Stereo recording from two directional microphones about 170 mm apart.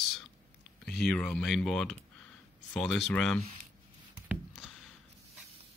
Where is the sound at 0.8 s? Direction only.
5° left (ahead or behind).